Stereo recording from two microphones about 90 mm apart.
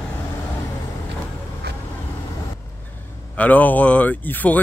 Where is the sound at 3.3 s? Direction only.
15° left (ahead or behind).